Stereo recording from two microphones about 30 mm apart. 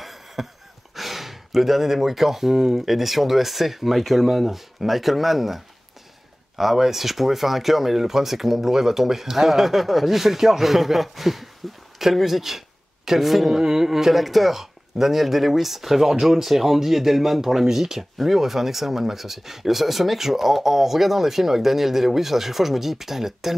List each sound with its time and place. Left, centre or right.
0.0 s a sound: centre
0.9 s gasp: centre
2.5 s speech: centre
6.6 s speech: centre
13.6 s speech: right
18.1 s speech: centre